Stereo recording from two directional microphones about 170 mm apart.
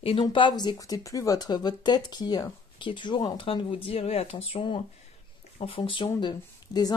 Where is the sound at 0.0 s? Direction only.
30° left (ahead or behind).